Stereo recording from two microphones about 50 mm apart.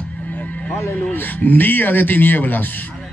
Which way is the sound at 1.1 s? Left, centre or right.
Left.